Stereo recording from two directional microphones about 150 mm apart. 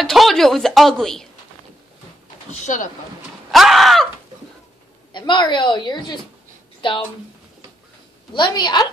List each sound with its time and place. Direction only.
0.0 s a woman's voice: centre (ahead or behind)
2.5 s speech: 55° left (ahead or behind)
3.5 s a sound: centre (ahead or behind)
5.1 s a woman's voice: 30° left (ahead or behind)
8.3 s a woman's voice: 30° left (ahead or behind)